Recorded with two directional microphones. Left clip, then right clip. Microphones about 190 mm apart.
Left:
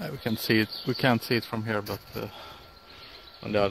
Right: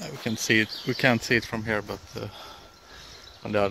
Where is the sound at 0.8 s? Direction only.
20° left (ahead or behind).